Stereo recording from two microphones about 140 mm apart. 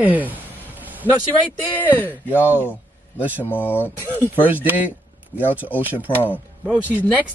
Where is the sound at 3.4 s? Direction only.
15° left (ahead or behind).